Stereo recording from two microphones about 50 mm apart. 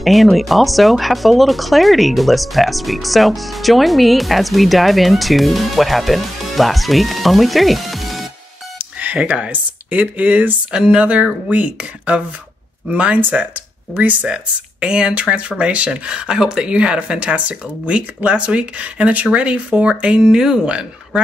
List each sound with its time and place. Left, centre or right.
0.0 s speech: centre
8.7 s music: right
9.3 s speech: right
14.3 s speech: centre
20.2 s speech: centre